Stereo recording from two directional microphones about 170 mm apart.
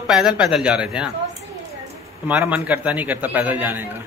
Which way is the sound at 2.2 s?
10° right (ahead or behind).